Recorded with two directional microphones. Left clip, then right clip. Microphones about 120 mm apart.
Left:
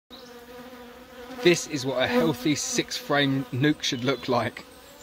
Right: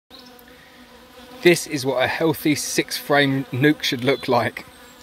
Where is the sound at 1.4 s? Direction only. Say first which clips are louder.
Right 5 dB; 35° right (ahead or behind).